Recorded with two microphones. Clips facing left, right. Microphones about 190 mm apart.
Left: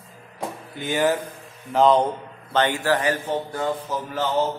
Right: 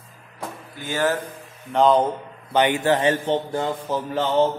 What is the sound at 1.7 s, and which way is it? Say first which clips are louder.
Speech: even; centre (ahead or behind).